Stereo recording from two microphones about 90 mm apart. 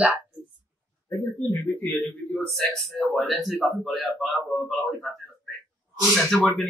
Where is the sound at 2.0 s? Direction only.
5° left (ahead or behind).